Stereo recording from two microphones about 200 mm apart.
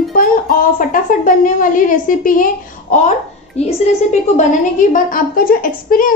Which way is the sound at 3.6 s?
35° left (ahead or behind).